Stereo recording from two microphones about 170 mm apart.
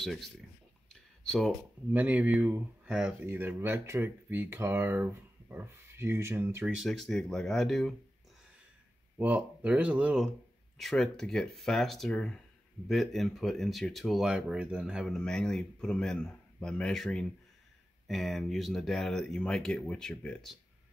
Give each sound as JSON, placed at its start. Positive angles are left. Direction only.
{"t": 0.0, "sound": "speech", "side_deg": 0}
{"t": 1.9, "sound": "speech", "side_deg": -10}
{"t": 9.2, "sound": "speech", "side_deg": -10}